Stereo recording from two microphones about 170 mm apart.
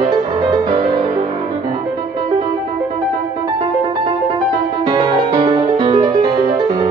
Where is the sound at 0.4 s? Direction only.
30° right (ahead or behind).